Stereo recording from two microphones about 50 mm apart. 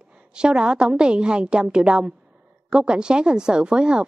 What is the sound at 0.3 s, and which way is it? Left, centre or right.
A woman's voice, centre.